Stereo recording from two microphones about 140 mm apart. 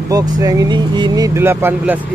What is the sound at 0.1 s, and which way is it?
Speech, 25° right (ahead or behind).